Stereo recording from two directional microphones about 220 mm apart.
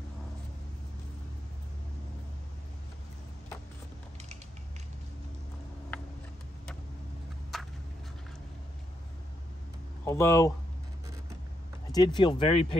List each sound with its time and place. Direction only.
7.5 s a sound: centre (ahead or behind)
10.0 s speech: 10° left (ahead or behind)
11.9 s speech: 20° left (ahead or behind)